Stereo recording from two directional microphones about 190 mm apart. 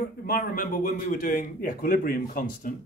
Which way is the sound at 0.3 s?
50° left (ahead or behind).